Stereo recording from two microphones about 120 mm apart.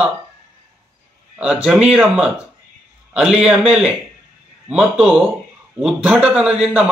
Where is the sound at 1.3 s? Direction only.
10° right (ahead or behind).